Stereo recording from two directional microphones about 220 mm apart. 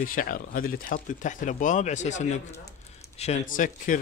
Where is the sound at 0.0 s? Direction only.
40° left (ahead or behind).